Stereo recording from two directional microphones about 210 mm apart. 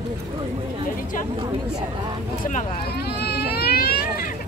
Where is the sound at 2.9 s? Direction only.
50° left (ahead or behind).